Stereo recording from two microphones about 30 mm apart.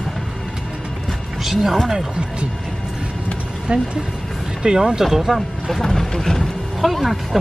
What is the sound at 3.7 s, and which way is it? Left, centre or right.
Speech, right.